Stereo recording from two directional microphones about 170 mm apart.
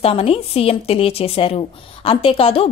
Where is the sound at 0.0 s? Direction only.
35° left (ahead or behind).